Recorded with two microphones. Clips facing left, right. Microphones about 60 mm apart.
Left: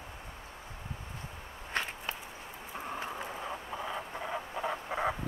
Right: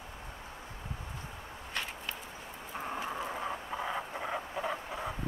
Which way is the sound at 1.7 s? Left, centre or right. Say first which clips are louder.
Left 4 dB; left.